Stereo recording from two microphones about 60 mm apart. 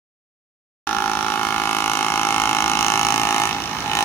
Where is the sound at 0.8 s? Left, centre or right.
Left.